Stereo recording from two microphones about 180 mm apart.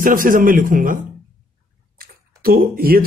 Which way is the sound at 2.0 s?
55° right (ahead or behind).